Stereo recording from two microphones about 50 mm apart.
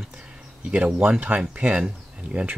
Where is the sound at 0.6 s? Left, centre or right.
Right.